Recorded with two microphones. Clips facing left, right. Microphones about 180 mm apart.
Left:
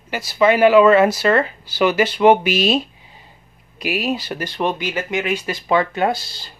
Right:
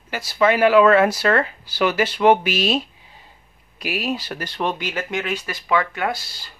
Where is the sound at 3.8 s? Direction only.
10° left (ahead or behind).